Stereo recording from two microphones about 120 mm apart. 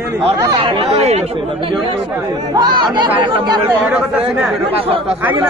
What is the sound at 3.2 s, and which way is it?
Speech, 40° right (ahead or behind).